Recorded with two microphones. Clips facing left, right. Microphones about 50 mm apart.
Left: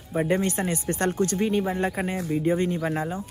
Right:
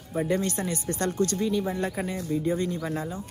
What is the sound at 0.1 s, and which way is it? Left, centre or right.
Speech, left.